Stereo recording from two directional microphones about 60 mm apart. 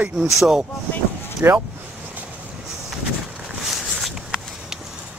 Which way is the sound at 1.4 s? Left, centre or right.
Right.